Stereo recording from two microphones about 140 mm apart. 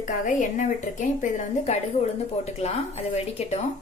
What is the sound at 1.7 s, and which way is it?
Speech, 50° left (ahead or behind).